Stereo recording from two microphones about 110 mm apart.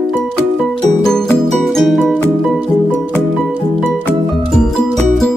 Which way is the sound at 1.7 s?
Centre (ahead or behind).